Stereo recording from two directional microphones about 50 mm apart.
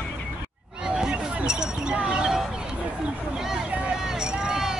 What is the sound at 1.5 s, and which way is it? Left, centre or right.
Basketball bounce, centre.